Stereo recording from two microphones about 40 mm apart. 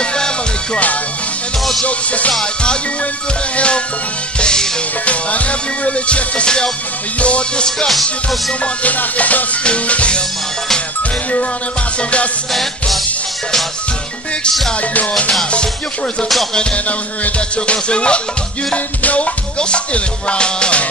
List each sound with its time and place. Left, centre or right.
0.0 s music: left
1.9 s music: left
5.0 s music: left
7.9 s music: centre
8.8 s music: left
12.0 s music: left
14.8 s music: left
16.7 s music: left
17.6 s music: left